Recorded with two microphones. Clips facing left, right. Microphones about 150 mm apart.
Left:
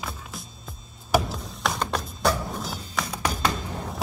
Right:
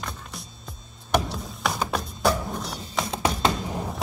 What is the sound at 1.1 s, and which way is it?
Music, centre (ahead or behind).